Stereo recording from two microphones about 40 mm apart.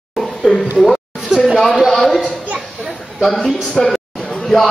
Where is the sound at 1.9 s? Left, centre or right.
Centre.